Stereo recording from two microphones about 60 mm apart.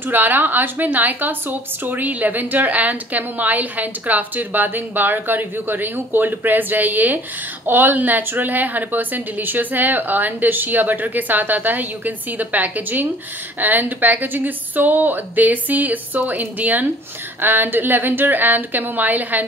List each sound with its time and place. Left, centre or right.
0.1 s a woman's voice: right